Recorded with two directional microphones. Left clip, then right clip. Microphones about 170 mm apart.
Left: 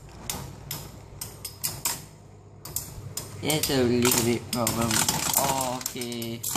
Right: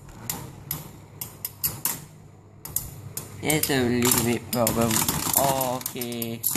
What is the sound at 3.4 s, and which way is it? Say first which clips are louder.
Speech: right 1 dB; 40° right (ahead or behind).